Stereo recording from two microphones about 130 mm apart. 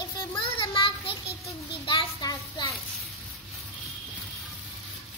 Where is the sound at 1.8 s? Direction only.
35° left (ahead or behind).